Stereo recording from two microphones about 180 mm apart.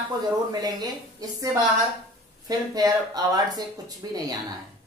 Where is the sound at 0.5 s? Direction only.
20° right (ahead or behind).